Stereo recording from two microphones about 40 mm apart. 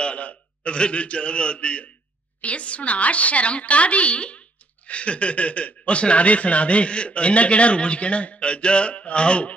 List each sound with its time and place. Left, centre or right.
0.0 s a man's voice: left